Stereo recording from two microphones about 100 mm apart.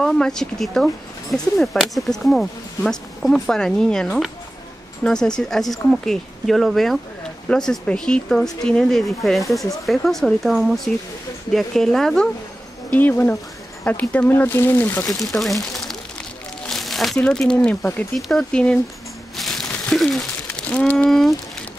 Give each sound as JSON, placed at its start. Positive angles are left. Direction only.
{"t": 0.0, "sound": "speech", "side_deg": 5}
{"t": 12.9, "sound": "speech", "side_deg": 20}
{"t": 16.6, "sound": "crumpling", "side_deg": 0}
{"t": 17.2, "sound": "speech", "side_deg": 5}
{"t": 19.3, "sound": "crumpling", "side_deg": 0}
{"t": 20.4, "sound": "a sound", "side_deg": 10}
{"t": 21.1, "sound": "speech", "side_deg": 5}